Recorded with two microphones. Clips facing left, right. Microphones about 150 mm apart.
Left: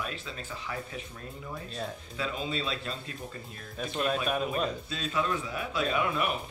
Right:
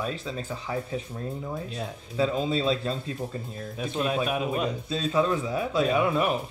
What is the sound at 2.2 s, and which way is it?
Speech, 35° right (ahead or behind).